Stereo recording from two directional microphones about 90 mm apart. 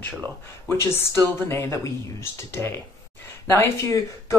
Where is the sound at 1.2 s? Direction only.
25° left (ahead or behind).